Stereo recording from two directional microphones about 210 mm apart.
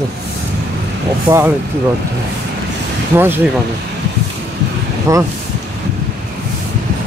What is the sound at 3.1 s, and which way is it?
Speech, 10° right (ahead or behind).